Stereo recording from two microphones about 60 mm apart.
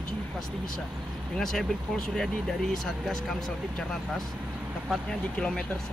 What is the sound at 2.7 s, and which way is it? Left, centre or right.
Speech, centre.